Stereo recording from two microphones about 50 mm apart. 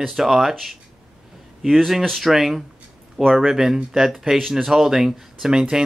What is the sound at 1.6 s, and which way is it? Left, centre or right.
Speech, centre.